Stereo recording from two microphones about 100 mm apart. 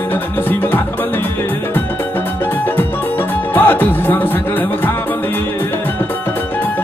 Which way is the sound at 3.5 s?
20° left (ahead or behind).